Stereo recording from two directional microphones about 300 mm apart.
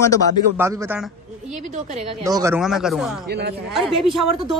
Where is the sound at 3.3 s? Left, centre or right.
Right.